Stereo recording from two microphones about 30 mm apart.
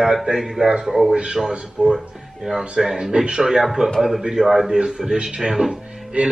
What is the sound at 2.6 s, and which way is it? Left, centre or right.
A man's voice, right.